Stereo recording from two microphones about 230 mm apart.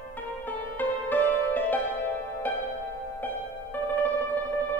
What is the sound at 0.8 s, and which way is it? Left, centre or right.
Music, centre.